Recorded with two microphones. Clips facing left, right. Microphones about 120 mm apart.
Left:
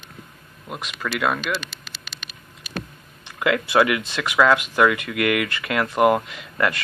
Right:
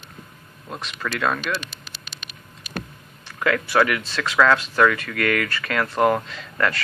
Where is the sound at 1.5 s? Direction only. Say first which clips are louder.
Left 1 dB; 70° left (ahead or behind).